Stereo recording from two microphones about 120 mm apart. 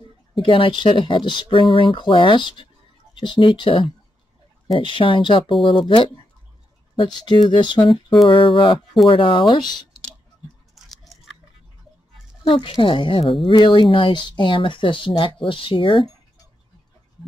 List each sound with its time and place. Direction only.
0.3 s a woman's voice: 45° left (ahead or behind)
10.7 s chewing: centre (ahead or behind)
12.4 s a woman's voice: 45° left (ahead or behind)